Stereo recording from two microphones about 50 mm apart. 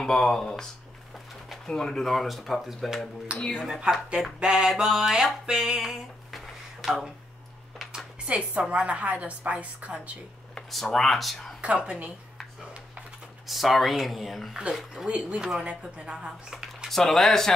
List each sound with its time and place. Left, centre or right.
0.0 s speech: centre
1.7 s speech: centre
3.3 s speech: centre
4.4 s a sound: centre
7.9 s a woman's voice: centre
10.7 s speech: centre
11.8 s speech: centre
13.5 s speech: centre
15.0 s a woman's voice: right
15.3 s speech: centre
16.9 s speech: centre